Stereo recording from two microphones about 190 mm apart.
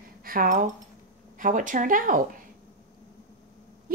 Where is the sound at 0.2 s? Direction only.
50° right (ahead or behind).